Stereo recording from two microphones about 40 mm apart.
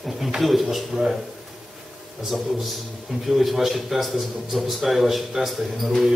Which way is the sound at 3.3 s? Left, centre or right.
Centre.